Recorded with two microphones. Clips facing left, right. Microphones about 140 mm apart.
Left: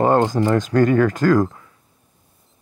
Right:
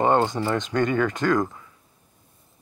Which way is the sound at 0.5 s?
Centre (ahead or behind).